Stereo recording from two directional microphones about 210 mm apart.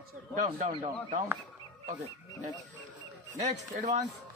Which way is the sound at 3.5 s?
35° right (ahead or behind).